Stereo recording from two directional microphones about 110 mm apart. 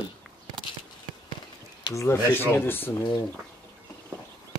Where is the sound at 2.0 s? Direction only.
20° left (ahead or behind).